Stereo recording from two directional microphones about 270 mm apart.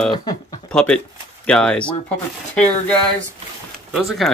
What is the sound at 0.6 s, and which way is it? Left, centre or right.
Speech, centre.